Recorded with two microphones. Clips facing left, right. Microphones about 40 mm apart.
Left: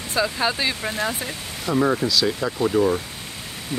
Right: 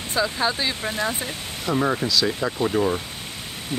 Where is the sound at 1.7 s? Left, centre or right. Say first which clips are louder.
Left 2 dB; centre.